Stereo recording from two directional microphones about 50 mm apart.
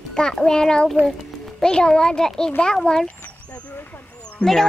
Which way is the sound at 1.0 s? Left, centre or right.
Centre.